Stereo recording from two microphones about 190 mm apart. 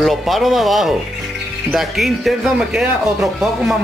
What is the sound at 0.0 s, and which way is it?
Speech, centre (ahead or behind).